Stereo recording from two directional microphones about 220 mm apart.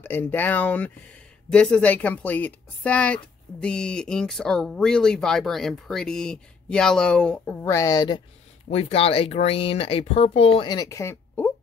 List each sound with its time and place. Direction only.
0.0 s speech: 10° left (ahead or behind)
8.6 s speech: 30° left (ahead or behind); by 11.5 s 10° left (ahead or behind)